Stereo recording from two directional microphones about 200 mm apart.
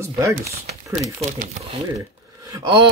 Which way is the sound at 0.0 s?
15° right (ahead or behind).